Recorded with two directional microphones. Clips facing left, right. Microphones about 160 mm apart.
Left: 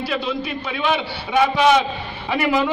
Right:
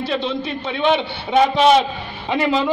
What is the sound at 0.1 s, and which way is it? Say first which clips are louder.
A man's voice: right 2 dB; 30° right (ahead or behind).